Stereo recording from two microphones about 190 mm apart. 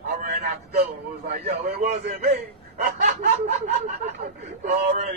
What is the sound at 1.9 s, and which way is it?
Speech, 35° right (ahead or behind).